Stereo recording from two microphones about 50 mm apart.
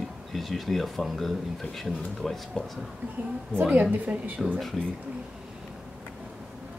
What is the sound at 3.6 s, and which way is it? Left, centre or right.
Speech, right.